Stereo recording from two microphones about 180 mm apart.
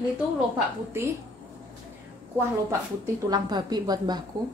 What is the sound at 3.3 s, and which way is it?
Speech, 20° right (ahead or behind).